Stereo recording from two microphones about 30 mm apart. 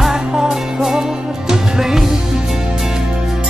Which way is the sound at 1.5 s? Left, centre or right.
Centre.